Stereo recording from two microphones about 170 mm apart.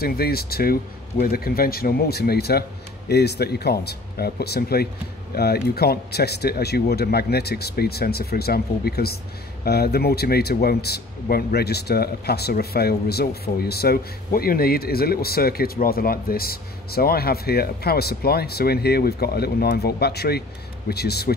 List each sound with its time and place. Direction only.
0.0 s speech: 65° left (ahead or behind)